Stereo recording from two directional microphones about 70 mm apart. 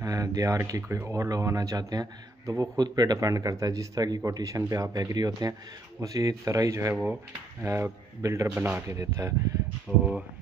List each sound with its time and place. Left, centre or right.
0.0 s speech: right
9.8 s speech: centre